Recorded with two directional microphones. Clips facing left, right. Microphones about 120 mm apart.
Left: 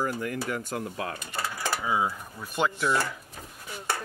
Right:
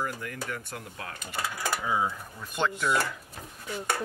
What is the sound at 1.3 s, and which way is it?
Speech, 10° right (ahead or behind).